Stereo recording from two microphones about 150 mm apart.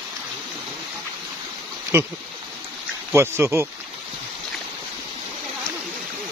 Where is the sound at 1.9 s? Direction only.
15° right (ahead or behind).